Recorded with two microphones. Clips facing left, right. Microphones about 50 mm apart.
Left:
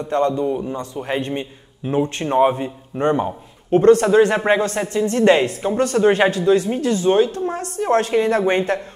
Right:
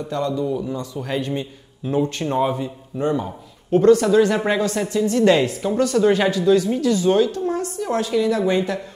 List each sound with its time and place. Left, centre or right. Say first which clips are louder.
0.0 s a woman's voice: left 4 dB; left